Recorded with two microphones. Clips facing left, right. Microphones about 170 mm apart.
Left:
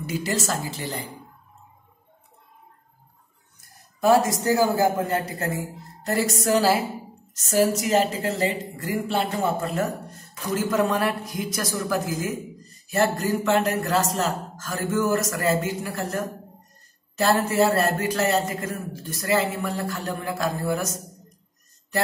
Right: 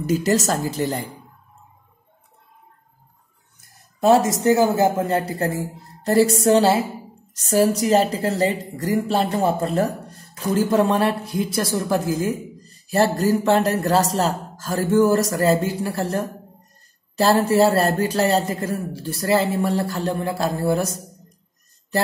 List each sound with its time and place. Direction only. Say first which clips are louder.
0.0 s a woman's voice: right 7 dB; 40° right (ahead or behind)
4.0 s a man's voice: right 3 dB; 25° right (ahead or behind)